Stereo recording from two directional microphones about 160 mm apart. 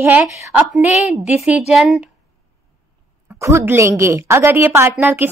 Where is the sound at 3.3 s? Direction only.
15° right (ahead or behind).